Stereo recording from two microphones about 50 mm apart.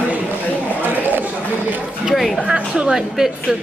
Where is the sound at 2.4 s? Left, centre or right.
Centre.